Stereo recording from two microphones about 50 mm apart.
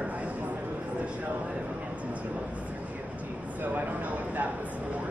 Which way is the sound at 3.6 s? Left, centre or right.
Right.